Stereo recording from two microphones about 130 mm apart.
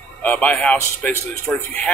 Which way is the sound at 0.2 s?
10° left (ahead or behind).